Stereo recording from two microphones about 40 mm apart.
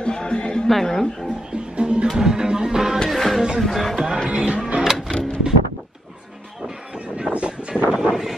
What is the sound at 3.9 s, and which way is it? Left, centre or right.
Music, centre.